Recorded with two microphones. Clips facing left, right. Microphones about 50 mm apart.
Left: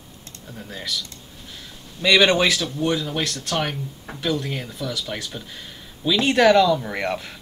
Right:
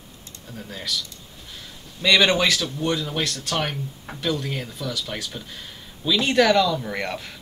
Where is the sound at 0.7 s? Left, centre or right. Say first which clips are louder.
Even; centre.